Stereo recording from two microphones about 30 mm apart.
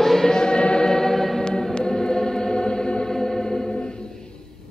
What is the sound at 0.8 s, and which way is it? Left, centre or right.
Music, centre.